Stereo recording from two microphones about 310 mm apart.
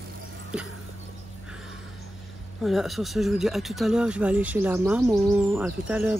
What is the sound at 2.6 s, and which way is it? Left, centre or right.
Speech, centre.